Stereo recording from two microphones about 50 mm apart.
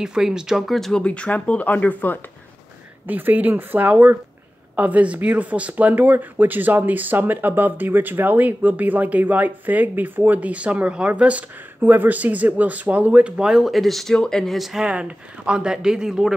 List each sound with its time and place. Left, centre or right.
0.0 s speech: centre
0.7 s speech: centre
1.0 s speech: left
3.1 s speech: right
11.8 s speech: right
13.5 s speech: centre
14.1 s speech: centre
14.8 s speech: right